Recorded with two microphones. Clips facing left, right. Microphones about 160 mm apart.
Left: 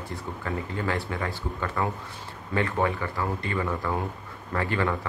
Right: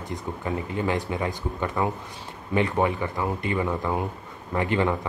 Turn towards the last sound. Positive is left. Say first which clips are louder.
# right 3 dB
turn(degrees=-20)  # may be behind; listen again after turning